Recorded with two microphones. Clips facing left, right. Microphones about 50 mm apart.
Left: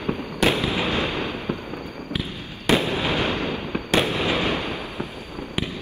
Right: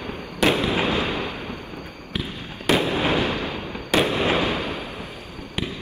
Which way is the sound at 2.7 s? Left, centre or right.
Centre.